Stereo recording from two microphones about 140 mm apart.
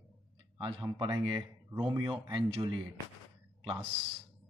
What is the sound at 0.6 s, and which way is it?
Speech, 35° right (ahead or behind).